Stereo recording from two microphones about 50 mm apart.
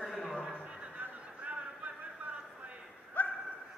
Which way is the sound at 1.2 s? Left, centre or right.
Right.